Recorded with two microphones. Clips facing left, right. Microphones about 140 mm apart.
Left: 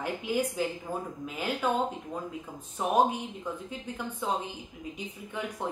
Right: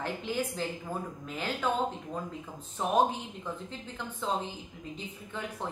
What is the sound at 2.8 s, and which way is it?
Speech, 10° left (ahead or behind).